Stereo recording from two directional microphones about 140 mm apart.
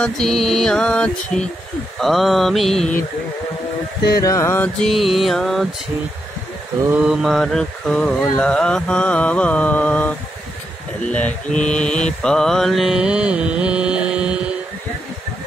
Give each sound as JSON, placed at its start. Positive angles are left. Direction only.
{"t": 0.0, "sound": "mantra", "side_deg": 5}
{"t": 4.2, "sound": "music", "side_deg": 20}
{"t": 4.7, "sound": "mantra", "side_deg": 0}
{"t": 7.0, "sound": "mantra", "side_deg": -5}